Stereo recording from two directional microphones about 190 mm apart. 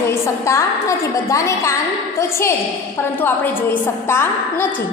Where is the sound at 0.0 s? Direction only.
15° left (ahead or behind).